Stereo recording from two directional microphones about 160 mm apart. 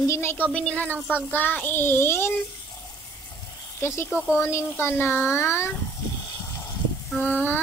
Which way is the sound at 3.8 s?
15° left (ahead or behind).